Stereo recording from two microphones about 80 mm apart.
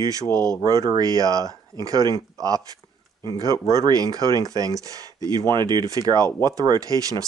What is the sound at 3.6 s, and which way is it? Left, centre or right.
Speech, right.